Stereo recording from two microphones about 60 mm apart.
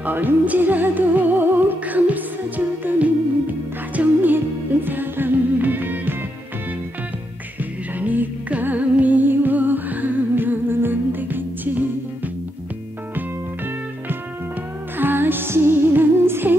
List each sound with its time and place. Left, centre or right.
0.0 s music: right
8.0 s music: right
15.0 s music: right